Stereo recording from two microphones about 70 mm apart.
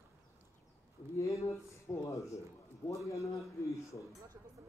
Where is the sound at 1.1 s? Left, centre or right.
Left.